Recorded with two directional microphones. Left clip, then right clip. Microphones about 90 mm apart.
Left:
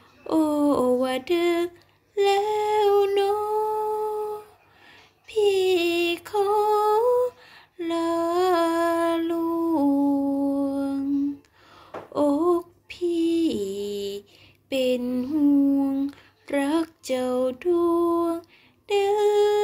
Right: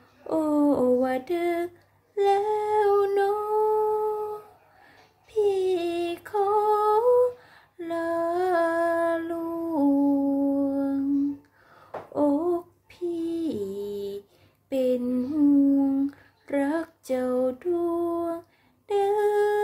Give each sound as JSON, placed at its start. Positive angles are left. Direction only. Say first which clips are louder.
{"t": 0.3, "sound": "a sound", "louder": "left 2 dB", "side_deg": -30}
{"t": 5.3, "sound": "female singing", "louder": "left 3 dB", "side_deg": -30}
{"t": 9.5, "sound": "humming", "louder": "left 6 dB", "side_deg": 5}
{"t": 9.8, "sound": "humming", "louder": "right 2 dB", "side_deg": -35}
{"t": 10.4, "sound": "music", "louder": "even", "side_deg": -40}
{"t": 12.1, "sound": "a sound", "louder": "left 3 dB", "side_deg": -30}
{"t": 15.0, "sound": "humming", "louder": "left 1 dB", "side_deg": -45}
{"t": 16.4, "sound": "a sound", "louder": "left 2 dB", "side_deg": -30}
{"t": 18.9, "sound": "humming", "louder": "left 2 dB", "side_deg": -35}